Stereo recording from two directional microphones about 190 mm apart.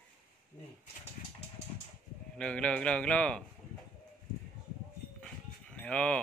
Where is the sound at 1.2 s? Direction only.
45° left (ahead or behind).